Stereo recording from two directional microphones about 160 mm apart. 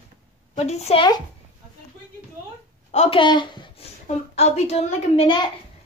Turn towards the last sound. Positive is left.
turn(degrees=35)  # may be behind; listen again after turning